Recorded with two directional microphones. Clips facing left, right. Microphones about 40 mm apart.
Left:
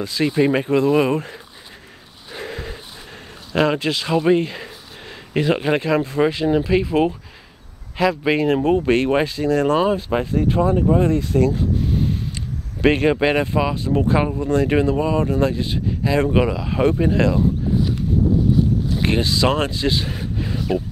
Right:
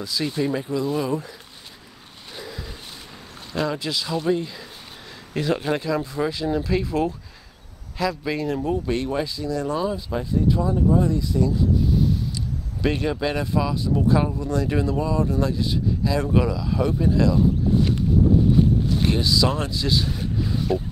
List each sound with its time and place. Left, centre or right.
0.0 s speech: left
0.4 s speech: left
2.3 s a sound: left
3.5 s speech: left
19.0 s speech: left